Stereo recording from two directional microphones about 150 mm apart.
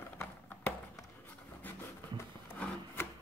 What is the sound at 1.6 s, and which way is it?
Filing, 10° left (ahead or behind).